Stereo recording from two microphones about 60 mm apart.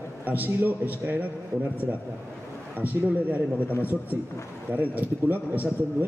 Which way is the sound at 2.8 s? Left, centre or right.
Right.